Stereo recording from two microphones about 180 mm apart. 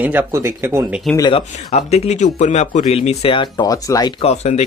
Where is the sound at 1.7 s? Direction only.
35° left (ahead or behind); by 4.1 s 20° left (ahead or behind).